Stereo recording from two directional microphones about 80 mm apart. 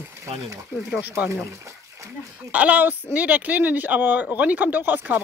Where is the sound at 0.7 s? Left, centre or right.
Centre.